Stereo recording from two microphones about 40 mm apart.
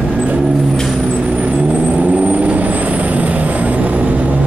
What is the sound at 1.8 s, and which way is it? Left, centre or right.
Vehicle, right.